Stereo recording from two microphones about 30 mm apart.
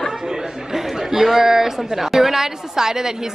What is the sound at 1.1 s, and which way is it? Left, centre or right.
A man's voice, centre.